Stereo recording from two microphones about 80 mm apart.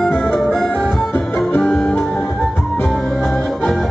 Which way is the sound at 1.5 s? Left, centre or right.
Left.